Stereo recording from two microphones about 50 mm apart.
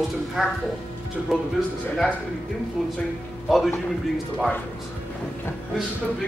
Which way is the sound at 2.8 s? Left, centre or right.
Centre.